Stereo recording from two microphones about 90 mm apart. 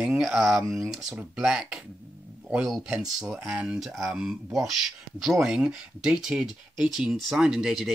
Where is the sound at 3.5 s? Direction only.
15° right (ahead or behind).